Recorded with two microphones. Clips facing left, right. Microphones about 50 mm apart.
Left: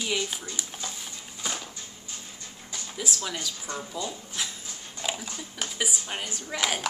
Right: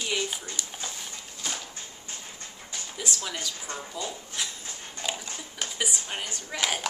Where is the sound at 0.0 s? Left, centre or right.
Centre.